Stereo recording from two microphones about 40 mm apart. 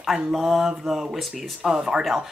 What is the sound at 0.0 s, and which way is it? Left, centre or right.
A woman's voice, centre.